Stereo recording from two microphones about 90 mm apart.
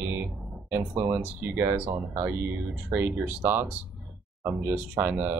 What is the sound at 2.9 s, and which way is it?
Speech, 25° right (ahead or behind).